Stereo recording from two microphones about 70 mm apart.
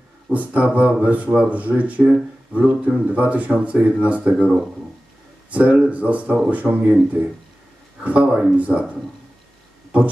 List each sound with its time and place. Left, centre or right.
0.3 s speech: right
5.5 s speech: right